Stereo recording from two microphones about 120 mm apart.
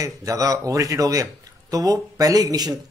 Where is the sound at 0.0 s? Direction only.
30° right (ahead or behind).